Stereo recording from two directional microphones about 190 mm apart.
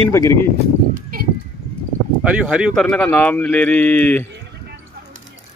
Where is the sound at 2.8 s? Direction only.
10° left (ahead or behind).